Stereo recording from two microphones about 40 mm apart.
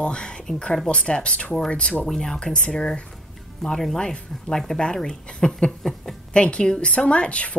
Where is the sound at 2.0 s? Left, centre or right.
Centre.